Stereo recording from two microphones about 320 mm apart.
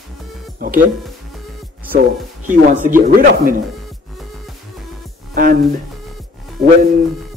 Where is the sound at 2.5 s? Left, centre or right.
Right.